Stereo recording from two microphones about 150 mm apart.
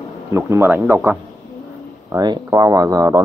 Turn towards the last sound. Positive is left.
turn(degrees=-20)  # may be behind; listen again after turning